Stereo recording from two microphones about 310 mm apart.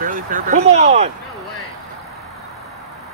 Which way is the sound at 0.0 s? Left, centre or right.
Right.